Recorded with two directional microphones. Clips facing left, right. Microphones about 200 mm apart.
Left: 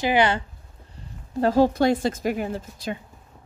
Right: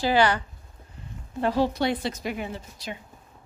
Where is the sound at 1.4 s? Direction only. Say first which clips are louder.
Left 5 dB; 45° left (ahead or behind).